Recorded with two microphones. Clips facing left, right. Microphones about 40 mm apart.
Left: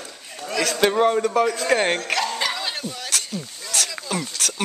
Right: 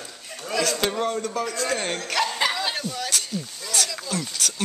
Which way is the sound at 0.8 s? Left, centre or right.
Left.